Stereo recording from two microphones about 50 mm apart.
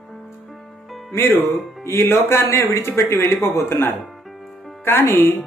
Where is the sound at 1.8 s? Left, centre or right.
Left.